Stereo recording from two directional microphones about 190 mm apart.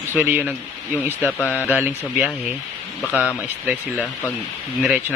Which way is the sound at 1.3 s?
10° left (ahead or behind).